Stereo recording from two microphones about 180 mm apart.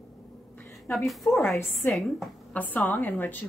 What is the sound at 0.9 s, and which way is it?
A woman's voice, centre (ahead or behind).